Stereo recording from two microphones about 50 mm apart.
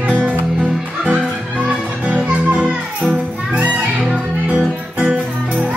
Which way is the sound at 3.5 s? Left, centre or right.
Right.